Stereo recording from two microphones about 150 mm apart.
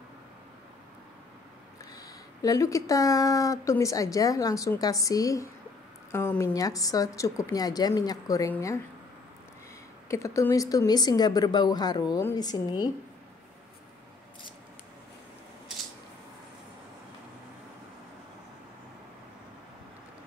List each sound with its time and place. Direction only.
2.0 s speech: 20° left (ahead or behind)
10.0 s speech: 20° left (ahead or behind)